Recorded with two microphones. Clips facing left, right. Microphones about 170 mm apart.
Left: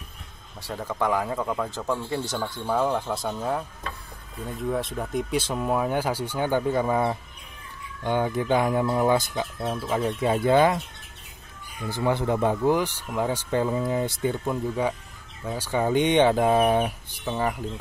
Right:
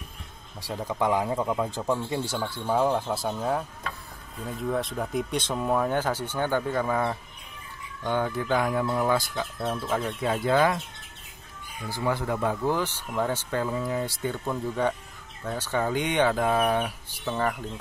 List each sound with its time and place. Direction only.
0.6 s speech: 10° right (ahead or behind); by 10.8 s 20° left (ahead or behind)
11.9 s speech: 25° left (ahead or behind)
15.9 s speech: 25° left (ahead or behind)